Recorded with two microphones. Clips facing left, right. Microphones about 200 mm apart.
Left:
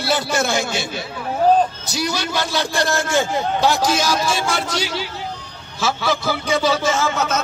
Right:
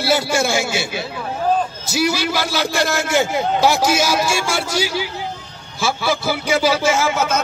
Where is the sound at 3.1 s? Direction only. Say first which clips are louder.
Right 2 dB; 15° right (ahead or behind).